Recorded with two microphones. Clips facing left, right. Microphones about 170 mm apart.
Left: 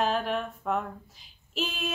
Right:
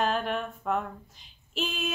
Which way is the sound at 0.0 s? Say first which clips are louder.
Left 1 dB; centre (ahead or behind).